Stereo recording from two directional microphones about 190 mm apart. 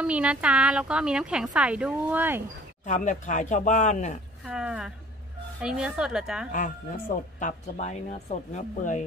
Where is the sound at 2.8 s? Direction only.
40° left (ahead or behind).